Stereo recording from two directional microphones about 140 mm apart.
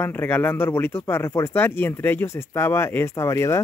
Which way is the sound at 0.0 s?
15° left (ahead or behind).